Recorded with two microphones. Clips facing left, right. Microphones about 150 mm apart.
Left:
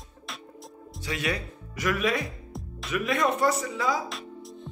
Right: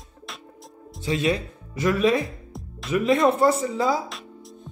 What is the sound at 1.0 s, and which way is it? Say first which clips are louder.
Speech: right 7 dB; 25° right (ahead or behind).